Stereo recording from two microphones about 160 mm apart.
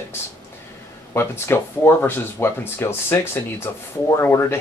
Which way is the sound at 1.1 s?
15° left (ahead or behind).